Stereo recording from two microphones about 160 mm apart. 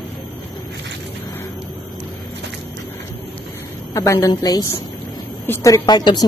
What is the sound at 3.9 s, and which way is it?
A woman's voice, 20° left (ahead or behind).